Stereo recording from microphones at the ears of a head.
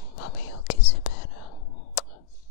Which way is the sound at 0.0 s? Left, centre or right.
Left.